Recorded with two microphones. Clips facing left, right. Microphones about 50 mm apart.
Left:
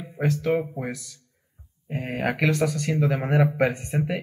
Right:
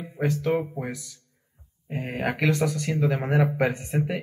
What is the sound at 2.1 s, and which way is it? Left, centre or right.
Speech, centre.